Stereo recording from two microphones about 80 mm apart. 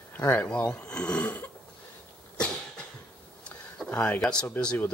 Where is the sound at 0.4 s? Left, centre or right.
Left.